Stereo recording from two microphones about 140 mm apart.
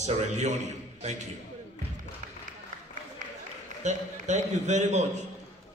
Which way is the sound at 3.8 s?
55° right (ahead or behind).